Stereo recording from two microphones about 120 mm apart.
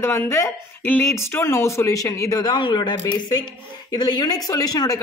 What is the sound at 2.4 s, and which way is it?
Speech, 40° left (ahead or behind).